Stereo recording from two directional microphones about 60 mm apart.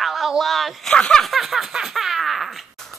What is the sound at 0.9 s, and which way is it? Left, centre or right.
Speech, centre.